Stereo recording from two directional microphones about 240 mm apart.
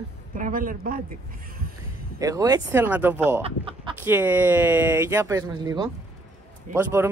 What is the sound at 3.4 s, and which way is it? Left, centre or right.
Speech, right.